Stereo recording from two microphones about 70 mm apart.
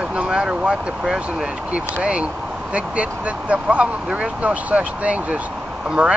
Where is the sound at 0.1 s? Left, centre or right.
Centre.